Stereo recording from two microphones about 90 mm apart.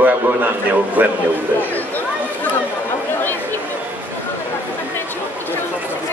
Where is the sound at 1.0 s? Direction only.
20° right (ahead or behind).